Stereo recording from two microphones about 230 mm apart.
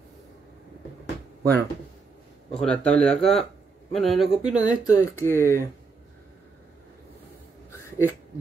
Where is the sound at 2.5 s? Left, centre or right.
Centre.